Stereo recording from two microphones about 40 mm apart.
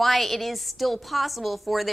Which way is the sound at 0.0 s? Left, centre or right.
Centre.